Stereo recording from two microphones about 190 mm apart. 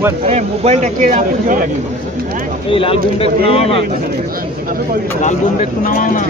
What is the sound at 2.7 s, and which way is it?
Speech, 30° left (ahead or behind).